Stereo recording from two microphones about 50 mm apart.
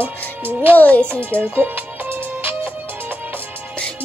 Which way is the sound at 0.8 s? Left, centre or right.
Left.